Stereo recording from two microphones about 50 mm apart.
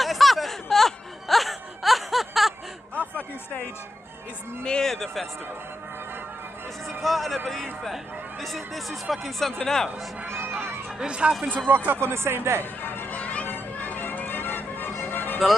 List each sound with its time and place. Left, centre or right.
0.0 s wail: centre
2.9 s a sound: left
4.8 s speech: centre
7.0 s a man's voice: centre
10.2 s crowd: right
11.0 s speech: centre
11.4 s speech: right
12.1 s speech: right
13.1 s a sound: left
13.5 s music: left